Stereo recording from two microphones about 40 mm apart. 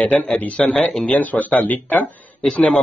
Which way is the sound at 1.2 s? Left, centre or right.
Left.